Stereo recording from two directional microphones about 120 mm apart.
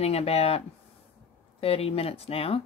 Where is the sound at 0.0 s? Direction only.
60° left (ahead or behind).